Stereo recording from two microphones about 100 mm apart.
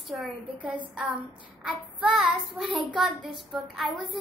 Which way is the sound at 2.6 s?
55° right (ahead or behind).